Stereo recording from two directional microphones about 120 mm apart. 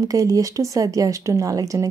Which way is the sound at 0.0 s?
30° right (ahead or behind).